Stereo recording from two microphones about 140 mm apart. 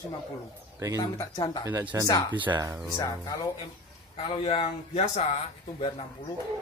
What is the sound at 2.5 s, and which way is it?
Speech, 25° right (ahead or behind).